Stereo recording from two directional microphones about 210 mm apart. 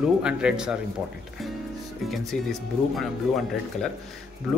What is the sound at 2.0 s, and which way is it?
Speech, centre (ahead or behind).